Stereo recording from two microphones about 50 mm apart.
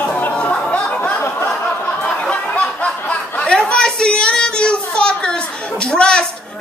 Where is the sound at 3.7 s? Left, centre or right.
Centre.